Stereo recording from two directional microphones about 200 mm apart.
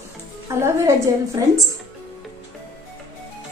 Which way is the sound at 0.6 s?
15° right (ahead or behind).